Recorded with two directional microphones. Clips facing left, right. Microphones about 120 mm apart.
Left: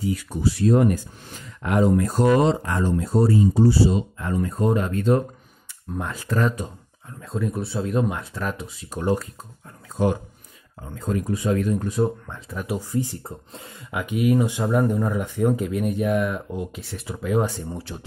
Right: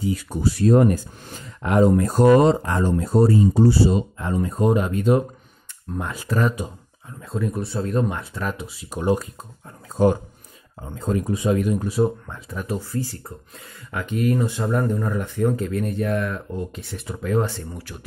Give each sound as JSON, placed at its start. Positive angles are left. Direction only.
{"t": 0.1, "sound": "speech", "side_deg": -35}
{"t": 2.6, "sound": "speech", "side_deg": -35}
{"t": 2.9, "sound": "speech", "side_deg": -50}
{"t": 4.2, "sound": "speech", "side_deg": -20}
{"t": 9.0, "sound": "speech", "side_deg": -15}
{"t": 10.8, "sound": "speech", "side_deg": -25}
{"t": 12.6, "sound": "speech", "side_deg": 15}
{"t": 13.9, "sound": "speech", "side_deg": 10}
{"t": 17.7, "sound": "speech", "side_deg": 25}